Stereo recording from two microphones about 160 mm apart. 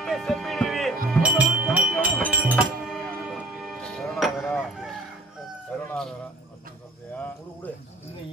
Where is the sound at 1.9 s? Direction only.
10° left (ahead or behind).